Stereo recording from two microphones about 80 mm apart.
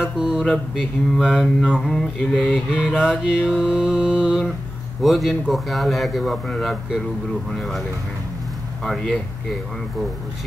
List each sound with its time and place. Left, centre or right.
0.0 s mantra: centre
0.7 s speech: centre
3.0 s mantra: centre
5.0 s speech: centre
8.8 s speech: centre